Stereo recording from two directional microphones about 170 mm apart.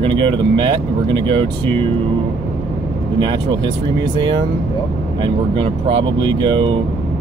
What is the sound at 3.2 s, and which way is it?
Speech, 25° right (ahead or behind).